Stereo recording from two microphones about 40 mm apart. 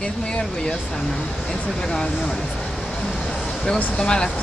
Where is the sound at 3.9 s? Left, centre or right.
Left.